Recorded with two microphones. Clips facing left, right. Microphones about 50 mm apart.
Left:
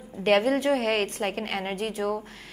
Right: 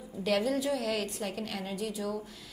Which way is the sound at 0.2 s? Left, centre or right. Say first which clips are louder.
Left 7 dB; left.